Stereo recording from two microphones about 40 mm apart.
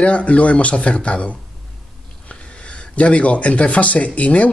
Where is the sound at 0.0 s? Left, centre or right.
Left.